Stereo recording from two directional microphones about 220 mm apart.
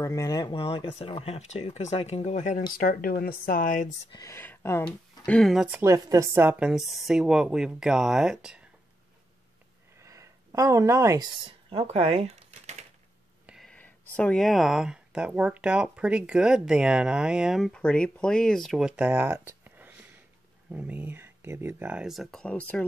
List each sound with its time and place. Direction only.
0.0 s speech: 15° left (ahead or behind); by 4.1 s 35° left (ahead or behind)
4.1 s speech: 15° left (ahead or behind); by 8.6 s 5° right (ahead or behind)
9.9 s a sound: 15° right (ahead or behind); by 12.7 s 30° right (ahead or behind)
13.5 s whispering: centre (ahead or behind)
14.1 s speech: 5° left (ahead or behind)